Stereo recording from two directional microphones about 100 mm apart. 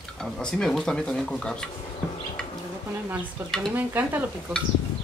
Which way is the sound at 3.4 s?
25° right (ahead or behind).